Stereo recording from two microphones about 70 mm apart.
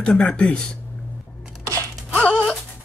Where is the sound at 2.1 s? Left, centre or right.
Centre.